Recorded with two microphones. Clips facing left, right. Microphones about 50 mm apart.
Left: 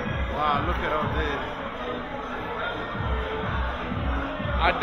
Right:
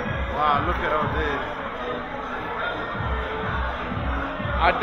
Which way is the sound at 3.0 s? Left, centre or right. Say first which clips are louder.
Right 2 dB; right.